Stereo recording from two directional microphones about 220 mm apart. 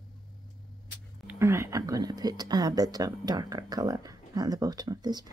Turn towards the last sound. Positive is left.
turn(degrees=-20)  # may be behind; listen again after turning